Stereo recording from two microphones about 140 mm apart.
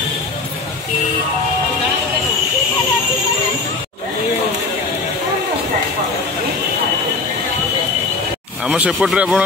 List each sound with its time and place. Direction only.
8.6 s speech: 10° right (ahead or behind)